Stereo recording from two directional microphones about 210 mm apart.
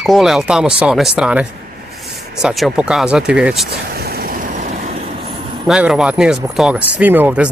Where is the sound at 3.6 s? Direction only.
50° right (ahead or behind).